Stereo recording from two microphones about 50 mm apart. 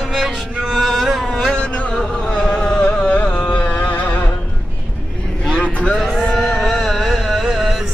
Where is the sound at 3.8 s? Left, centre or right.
Left.